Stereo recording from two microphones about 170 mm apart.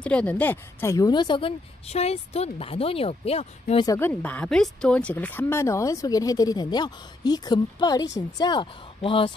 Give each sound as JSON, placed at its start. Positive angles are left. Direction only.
{"t": 0.0, "sound": "speech", "side_deg": 5}
{"t": 3.8, "sound": "speech", "side_deg": 20}
{"t": 4.1, "sound": "speech", "side_deg": 10}